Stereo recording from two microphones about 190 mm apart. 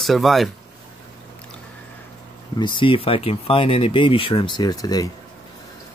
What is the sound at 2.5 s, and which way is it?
Speech, 25° left (ahead or behind).